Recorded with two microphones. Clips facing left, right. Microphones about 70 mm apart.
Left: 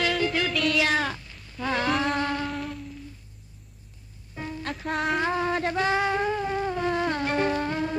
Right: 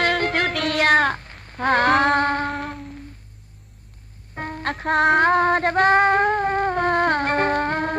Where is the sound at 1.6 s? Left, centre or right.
Right.